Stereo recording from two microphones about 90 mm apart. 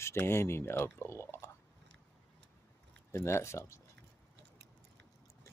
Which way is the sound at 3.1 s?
30° left (ahead or behind).